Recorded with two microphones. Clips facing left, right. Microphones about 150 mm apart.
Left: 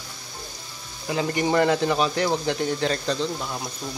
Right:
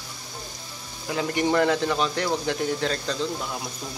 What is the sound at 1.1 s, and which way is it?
A man's voice, centre (ahead or behind).